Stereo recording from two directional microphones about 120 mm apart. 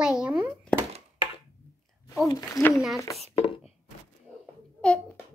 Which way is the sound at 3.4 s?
55° left (ahead or behind).